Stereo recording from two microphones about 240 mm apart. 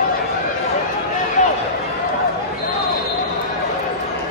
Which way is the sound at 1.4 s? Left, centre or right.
Left.